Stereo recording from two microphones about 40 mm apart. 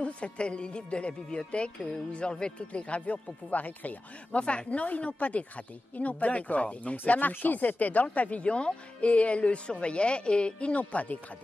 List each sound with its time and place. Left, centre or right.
0.0 s a woman's voice: left
7.1 s speech: left
10.8 s speech: left